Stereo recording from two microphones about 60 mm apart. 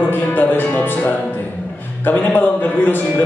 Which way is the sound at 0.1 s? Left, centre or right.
Left.